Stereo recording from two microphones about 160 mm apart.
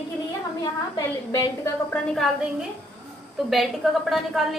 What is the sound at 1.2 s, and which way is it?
Speech, 20° left (ahead or behind).